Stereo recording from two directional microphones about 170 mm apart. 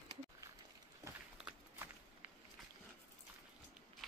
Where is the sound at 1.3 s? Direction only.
5° right (ahead or behind).